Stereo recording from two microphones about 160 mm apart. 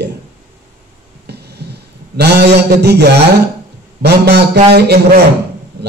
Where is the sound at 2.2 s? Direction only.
90° right.